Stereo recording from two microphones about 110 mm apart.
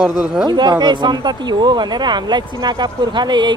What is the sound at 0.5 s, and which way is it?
Speech, 40° right (ahead or behind).